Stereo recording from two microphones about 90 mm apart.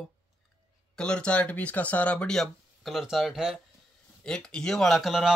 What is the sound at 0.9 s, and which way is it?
Speech, 10° left (ahead or behind).